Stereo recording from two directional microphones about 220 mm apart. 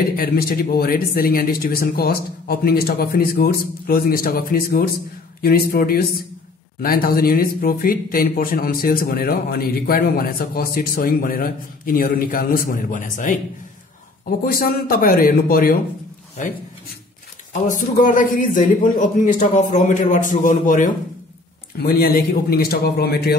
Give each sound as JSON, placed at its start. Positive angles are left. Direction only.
{"t": 0.2, "sound": "speech", "side_deg": 45}
{"t": 17.5, "sound": "speech", "side_deg": 35}